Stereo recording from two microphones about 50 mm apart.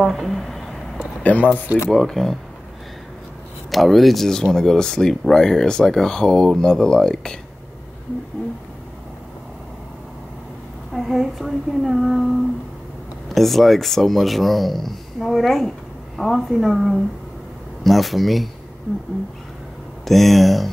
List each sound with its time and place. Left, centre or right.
0.0 s a sound: centre
1.2 s speech: left
1.9 s speech: centre
3.7 s speech: centre
10.9 s speech: centre
13.3 s speech: centre
20.1 s speech: centre